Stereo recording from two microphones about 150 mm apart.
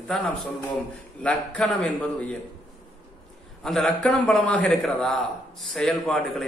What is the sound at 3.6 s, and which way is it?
A man's voice, centre (ahead or behind).